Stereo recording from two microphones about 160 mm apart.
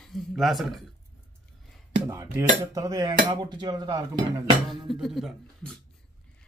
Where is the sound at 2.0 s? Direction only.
20° right (ahead or behind).